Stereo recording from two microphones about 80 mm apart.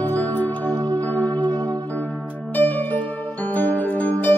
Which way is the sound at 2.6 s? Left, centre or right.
Left.